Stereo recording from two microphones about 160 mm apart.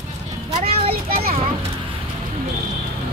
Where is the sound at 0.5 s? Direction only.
40° right (ahead or behind).